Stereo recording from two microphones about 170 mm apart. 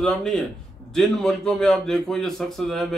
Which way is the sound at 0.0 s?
Centre (ahead or behind).